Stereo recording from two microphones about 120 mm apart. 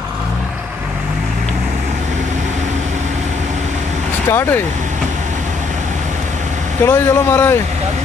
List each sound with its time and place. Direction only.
4.3 s speech: 20° left (ahead or behind)
6.8 s speech: 25° left (ahead or behind)